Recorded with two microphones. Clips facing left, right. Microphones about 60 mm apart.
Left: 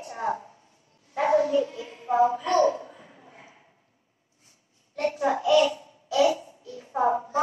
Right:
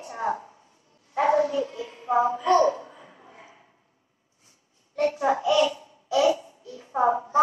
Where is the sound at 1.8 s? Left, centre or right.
Centre.